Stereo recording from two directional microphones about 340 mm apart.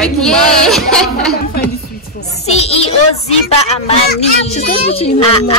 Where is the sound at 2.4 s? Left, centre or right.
Centre.